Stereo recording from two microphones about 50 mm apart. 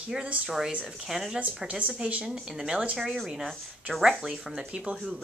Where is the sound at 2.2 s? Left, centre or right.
Centre.